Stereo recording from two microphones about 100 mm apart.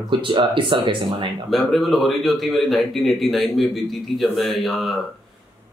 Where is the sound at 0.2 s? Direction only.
55° right (ahead or behind).